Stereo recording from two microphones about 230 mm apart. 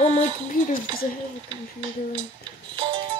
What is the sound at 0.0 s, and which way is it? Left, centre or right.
Speech, left.